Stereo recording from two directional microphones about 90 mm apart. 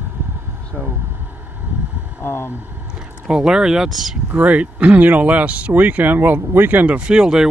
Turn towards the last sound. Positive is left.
turn(degrees=-10)  # may be behind; listen again after turning